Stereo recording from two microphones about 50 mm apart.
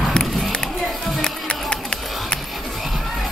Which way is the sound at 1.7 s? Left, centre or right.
Centre.